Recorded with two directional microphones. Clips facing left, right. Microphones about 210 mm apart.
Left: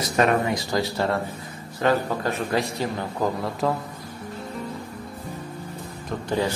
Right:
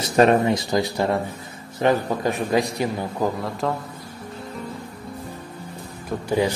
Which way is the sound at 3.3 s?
Centre (ahead or behind).